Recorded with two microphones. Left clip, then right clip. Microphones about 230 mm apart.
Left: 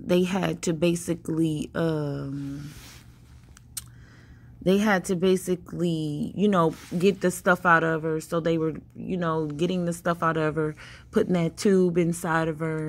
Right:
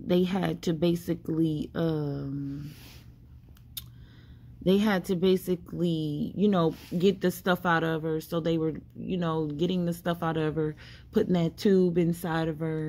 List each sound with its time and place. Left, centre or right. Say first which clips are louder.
0.0 s a woman's voice: left 3 dB; centre
4.6 s a woman's voice: left 3 dB; centre
5.9 s speech: left 1 dB; centre
6.3 s a woman's voice: left 4 dB; centre